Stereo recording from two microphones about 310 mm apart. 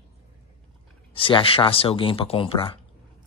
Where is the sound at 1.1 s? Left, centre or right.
Centre.